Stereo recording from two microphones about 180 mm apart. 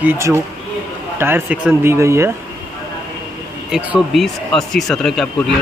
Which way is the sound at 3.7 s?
5° right (ahead or behind).